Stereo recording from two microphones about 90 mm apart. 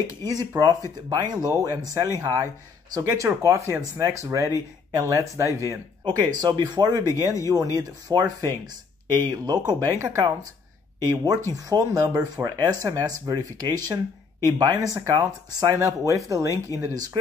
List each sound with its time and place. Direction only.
0.6 s speech: 50° right (ahead or behind)
6.0 s speech: 50° right (ahead or behind)
7.0 s speech: 35° left (ahead or behind)
7.5 s speech: 45° right (ahead or behind)
12.1 s speech: 30° right (ahead or behind)
12.4 s speech: 40° right (ahead or behind)